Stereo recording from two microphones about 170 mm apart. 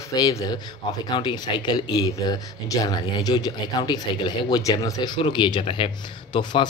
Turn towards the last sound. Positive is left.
turn(degrees=25)  # may be behind; listen again after turning